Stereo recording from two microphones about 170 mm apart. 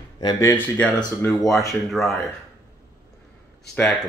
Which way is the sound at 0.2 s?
25° left (ahead or behind).